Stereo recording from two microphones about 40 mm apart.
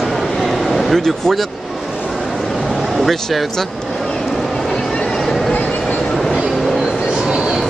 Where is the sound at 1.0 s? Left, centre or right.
Centre.